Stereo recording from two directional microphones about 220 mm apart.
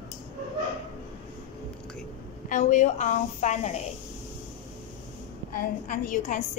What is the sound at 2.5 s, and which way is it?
A woman's voice, 35° left (ahead or behind).